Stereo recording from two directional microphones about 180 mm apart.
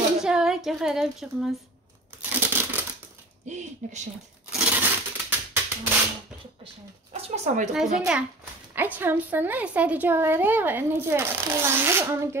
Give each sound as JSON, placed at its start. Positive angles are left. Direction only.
{"t": 0.2, "sound": "a sound", "side_deg": -5}
{"t": 2.2, "sound": "crumpling", "side_deg": -10}
{"t": 3.4, "sound": "speech", "side_deg": -40}
{"t": 4.5, "sound": "a sound", "side_deg": -5}
{"t": 6.6, "sound": "speech", "side_deg": -35}
{"t": 8.1, "sound": "a child's voice", "side_deg": -5}